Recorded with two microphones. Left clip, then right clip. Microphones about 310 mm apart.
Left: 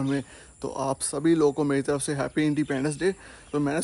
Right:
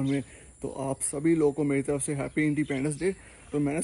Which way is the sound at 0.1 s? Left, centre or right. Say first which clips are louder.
Left 2 dB; centre.